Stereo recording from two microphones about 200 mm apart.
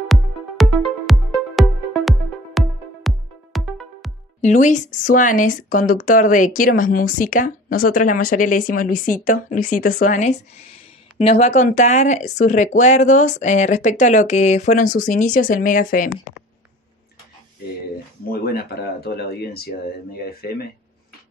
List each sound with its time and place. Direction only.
0.6 s music: centre (ahead or behind)
4.4 s speech: 35° left (ahead or behind)
18.3 s speech: 50° left (ahead or behind)